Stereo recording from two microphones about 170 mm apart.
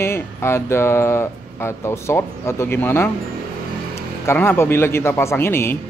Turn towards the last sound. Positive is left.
turn(degrees=15)  # may be behind; listen again after turning